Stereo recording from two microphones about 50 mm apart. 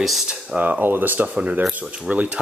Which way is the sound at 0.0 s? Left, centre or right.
Centre.